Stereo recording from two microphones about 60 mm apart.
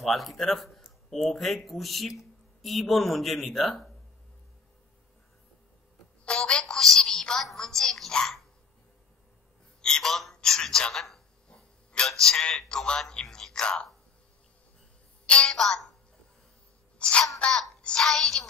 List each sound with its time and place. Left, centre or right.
0.0 s speech: centre
6.2 s a woman's voice: centre
6.6 s a sound: centre
9.8 s a sound: centre
12.1 s a man's voice: centre
15.2 s a woman's voice: centre
15.5 s a woman's voice: centre
17.0 s babbling: centre
17.4 s a sound: centre
18.1 s speech: centre